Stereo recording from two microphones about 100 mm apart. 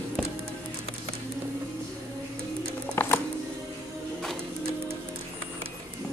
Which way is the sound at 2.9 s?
20° left (ahead or behind).